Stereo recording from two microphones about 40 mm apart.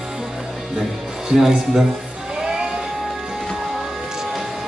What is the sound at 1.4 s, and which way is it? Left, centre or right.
Speech, centre.